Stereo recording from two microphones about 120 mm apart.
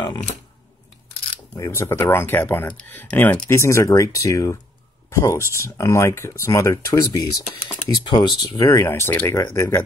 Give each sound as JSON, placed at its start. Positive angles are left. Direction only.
{"t": 1.6, "sound": "speech", "side_deg": 20}
{"t": 8.0, "sound": "speech", "side_deg": 45}